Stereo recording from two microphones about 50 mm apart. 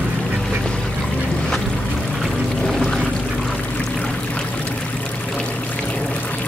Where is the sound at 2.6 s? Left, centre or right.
Centre.